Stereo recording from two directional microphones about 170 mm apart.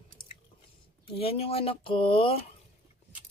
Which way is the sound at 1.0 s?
35° left (ahead or behind).